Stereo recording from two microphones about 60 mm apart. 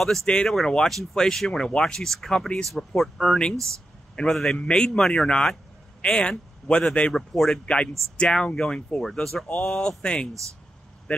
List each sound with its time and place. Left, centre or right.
0.0 s speech: centre
7.2 s speech: centre
7.6 s speech: centre